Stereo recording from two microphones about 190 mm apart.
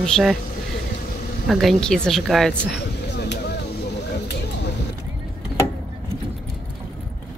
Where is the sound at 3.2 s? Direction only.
60° left (ahead or behind).